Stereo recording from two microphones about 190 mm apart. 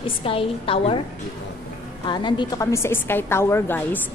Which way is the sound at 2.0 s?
25° left (ahead or behind).